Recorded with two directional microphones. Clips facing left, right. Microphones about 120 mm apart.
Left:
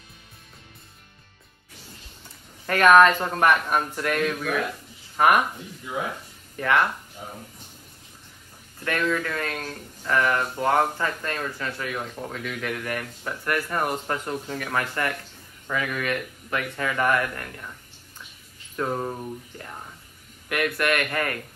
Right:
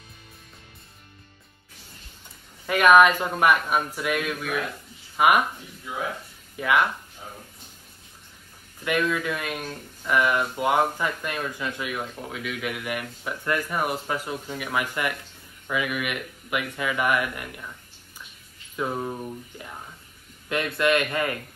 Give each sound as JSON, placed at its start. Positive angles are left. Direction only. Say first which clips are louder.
{"t": 2.6, "sound": "speech", "louder": "left 1 dB", "side_deg": -10}
{"t": 6.5, "sound": "speech", "louder": "even", "side_deg": -10}
{"t": 8.8, "sound": "speech", "louder": "right 1 dB", "side_deg": -15}
{"t": 12.0, "sound": "speech", "louder": "left 1 dB", "side_deg": -5}
{"t": 13.7, "sound": "speech", "louder": "left 1 dB", "side_deg": -5}
{"t": 18.8, "sound": "speech", "louder": "left 1 dB", "side_deg": 0}
{"t": 20.4, "sound": "speech", "louder": "right 1 dB", "side_deg": -25}